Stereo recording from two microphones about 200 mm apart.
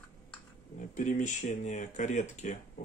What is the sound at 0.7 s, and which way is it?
Speech, 40° left (ahead or behind).